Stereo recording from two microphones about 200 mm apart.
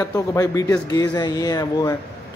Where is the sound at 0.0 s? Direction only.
15° left (ahead or behind).